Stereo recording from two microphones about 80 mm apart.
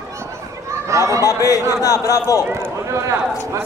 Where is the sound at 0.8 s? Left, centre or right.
Right.